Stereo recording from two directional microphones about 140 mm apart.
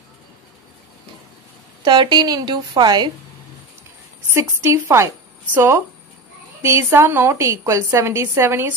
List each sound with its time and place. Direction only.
1.9 s a woman's voice: 30° right (ahead or behind)
4.3 s a woman's voice: 20° right (ahead or behind)